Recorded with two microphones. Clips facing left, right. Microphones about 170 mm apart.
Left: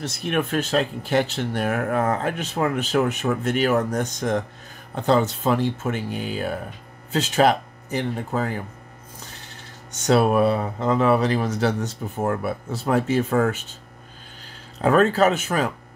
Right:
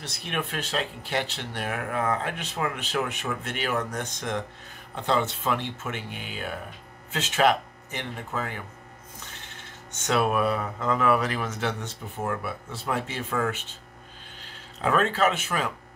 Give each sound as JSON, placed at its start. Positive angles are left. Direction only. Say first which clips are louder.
{"t": 0.0, "sound": "speech", "louder": "left 8 dB", "side_deg": 45}